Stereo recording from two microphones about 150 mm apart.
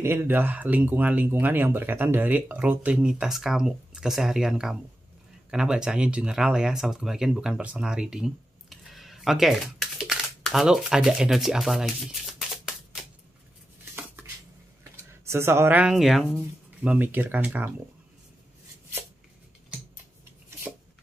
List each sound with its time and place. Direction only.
0.0 s speech: 15° right (ahead or behind)
7.7 s a sound: 5° right (ahead or behind)
13.9 s dishes: 10° right (ahead or behind)
15.2 s speech: 15° right (ahead or behind)